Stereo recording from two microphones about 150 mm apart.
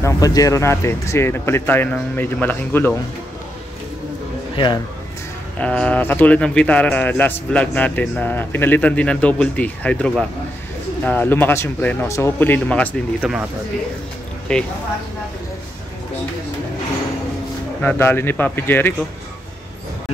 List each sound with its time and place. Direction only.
0.0 s speech: 25° left (ahead or behind)
5.6 s speech: 5° left (ahead or behind)
13.2 s speech: 5° right (ahead or behind)
14.5 s speech: 5° left (ahead or behind)
17.8 s speech: 15° left (ahead or behind)